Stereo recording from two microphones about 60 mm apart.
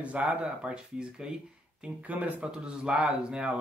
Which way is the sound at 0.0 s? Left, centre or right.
Right.